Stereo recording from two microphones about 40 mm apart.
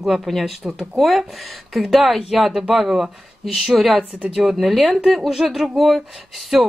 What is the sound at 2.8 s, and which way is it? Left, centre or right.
Speech, centre.